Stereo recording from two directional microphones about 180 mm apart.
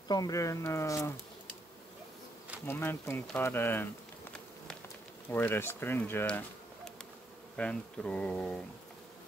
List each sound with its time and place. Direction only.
0.1 s speech: 20° left (ahead or behind)
2.6 s speech: 10° left (ahead or behind)
3.3 s insect: 10° left (ahead or behind)
5.3 s speech: 10° left (ahead or behind)